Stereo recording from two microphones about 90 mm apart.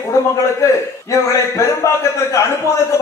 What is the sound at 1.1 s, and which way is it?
A man's voice, 35° left (ahead or behind).